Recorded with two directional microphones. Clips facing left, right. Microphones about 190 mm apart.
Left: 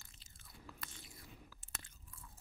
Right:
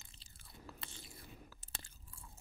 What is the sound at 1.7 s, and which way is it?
Crunch, 30° right (ahead or behind).